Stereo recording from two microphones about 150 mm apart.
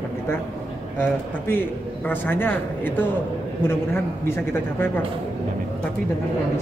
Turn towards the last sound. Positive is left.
turn(degrees=15)  # may be behind; listen again after turning